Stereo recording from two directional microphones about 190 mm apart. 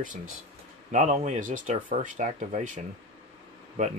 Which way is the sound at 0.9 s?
40° right (ahead or behind).